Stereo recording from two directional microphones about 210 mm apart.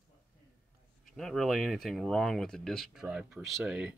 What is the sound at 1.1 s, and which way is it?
Speech, centre (ahead or behind).